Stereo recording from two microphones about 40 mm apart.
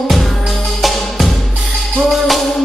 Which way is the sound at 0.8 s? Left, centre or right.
Centre.